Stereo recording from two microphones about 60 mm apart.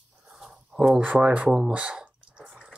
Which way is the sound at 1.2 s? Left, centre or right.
Centre.